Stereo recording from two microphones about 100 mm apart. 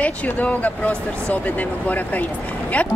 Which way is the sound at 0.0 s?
15° left (ahead or behind).